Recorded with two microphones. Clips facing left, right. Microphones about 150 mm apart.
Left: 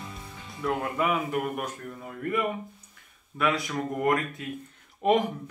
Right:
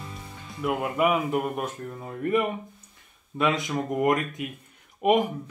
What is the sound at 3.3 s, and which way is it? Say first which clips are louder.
Speech: right 2 dB; 20° right (ahead or behind).